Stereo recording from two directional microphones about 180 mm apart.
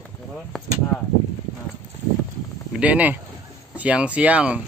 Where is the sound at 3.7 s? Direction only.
5° right (ahead or behind).